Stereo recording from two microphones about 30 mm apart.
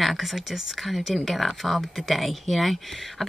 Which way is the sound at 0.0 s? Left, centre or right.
Centre.